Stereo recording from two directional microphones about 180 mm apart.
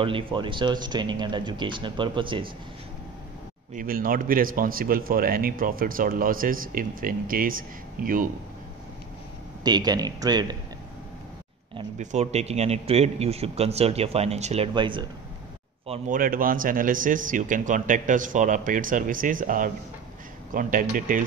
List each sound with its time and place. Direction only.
0.0 s speech: 30° right (ahead or behind)
3.7 s a man's voice: 50° right (ahead or behind)
9.6 s speech: 20° right (ahead or behind)
12.0 s a man's voice: 40° right (ahead or behind)
16.1 s a man's voice: 50° right (ahead or behind)